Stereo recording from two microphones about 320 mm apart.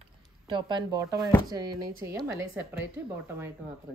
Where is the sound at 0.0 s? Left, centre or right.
Centre.